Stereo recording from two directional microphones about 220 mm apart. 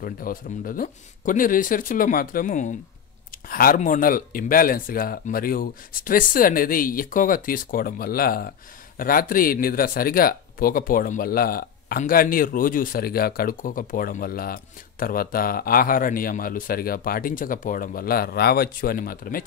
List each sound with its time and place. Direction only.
0.0 s speech: 40° left (ahead or behind)